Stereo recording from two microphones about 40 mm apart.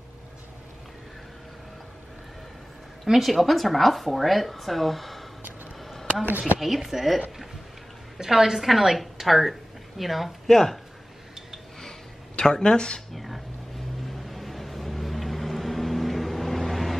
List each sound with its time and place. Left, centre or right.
3.1 s a woman's voice: centre
6.6 s a woman's voice: centre
8.2 s a woman's voice: centre
12.4 s speech: centre
13.1 s vehicle: centre